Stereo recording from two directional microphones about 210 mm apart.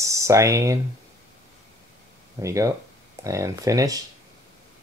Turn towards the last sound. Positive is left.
turn(degrees=-15)  # may be behind; listen again after turning